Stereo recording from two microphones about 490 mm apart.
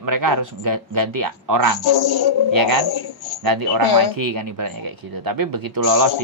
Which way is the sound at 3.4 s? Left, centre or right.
Right.